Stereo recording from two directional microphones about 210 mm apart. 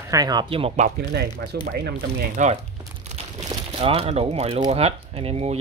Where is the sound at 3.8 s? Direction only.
25° right (ahead or behind).